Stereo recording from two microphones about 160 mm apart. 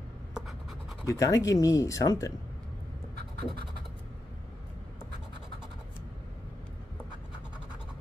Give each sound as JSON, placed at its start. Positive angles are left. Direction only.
{"t": 0.3, "sound": "writing", "side_deg": 0}
{"t": 1.0, "sound": "speech", "side_deg": 20}